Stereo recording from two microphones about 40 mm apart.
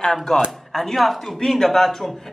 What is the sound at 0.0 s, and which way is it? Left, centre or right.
Speech, centre.